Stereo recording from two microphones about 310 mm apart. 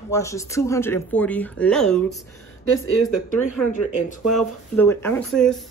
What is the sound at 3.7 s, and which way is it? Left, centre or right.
Speech, left.